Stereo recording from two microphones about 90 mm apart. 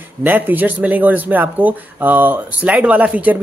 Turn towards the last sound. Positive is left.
turn(degrees=-15)  # may be behind; listen again after turning